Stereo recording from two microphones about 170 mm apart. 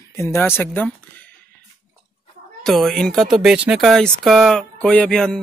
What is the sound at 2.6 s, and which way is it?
Speech, centre (ahead or behind).